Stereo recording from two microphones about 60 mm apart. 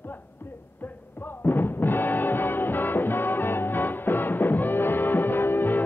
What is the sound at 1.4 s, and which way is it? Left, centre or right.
Music, left.